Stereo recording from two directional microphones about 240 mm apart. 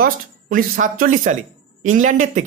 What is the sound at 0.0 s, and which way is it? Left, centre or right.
Speech, right.